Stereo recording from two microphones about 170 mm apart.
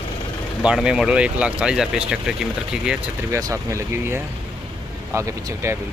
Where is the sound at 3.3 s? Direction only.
20° right (ahead or behind).